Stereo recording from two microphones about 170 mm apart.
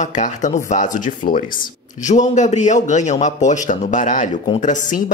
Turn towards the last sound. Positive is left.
turn(degrees=50)  # may be behind; listen again after turning